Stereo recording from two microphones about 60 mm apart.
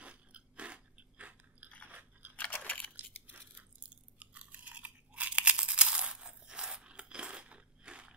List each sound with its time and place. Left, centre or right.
0.0 s crunch: centre
2.5 s crunch: left
3.0 s chewing: right